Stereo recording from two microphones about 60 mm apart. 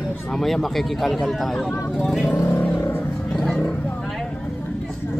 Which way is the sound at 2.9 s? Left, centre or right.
Left.